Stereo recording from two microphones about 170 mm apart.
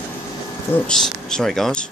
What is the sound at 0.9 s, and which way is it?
Speech, 5° left (ahead or behind).